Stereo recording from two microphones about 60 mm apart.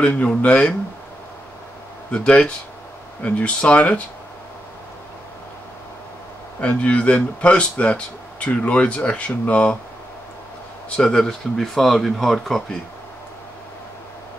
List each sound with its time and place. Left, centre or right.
0.0 s speech: left
2.0 s speech: left
6.6 s speech: left
11.0 s speech: centre